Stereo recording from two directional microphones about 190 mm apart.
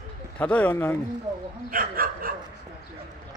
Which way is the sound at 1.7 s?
50° right (ahead or behind).